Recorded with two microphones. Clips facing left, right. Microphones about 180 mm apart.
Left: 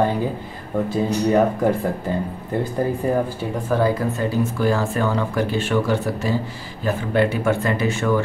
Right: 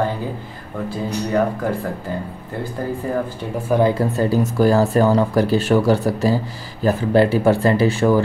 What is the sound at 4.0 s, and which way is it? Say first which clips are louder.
Speech: right 3 dB; 35° right (ahead or behind).